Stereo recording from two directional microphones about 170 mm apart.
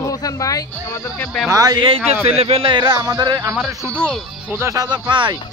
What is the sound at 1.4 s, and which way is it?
Speech, 20° right (ahead or behind).